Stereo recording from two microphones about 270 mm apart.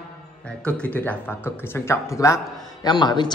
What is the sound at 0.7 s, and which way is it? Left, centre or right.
A man's voice, centre.